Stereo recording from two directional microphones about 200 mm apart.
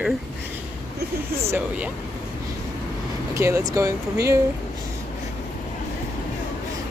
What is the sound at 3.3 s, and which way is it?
Speech, 15° right (ahead or behind).